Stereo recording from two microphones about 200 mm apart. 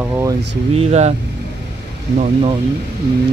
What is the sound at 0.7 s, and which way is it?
Speech, 30° right (ahead or behind).